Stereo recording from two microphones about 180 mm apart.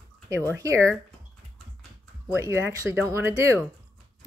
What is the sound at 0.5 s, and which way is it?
Speech, 15° right (ahead or behind).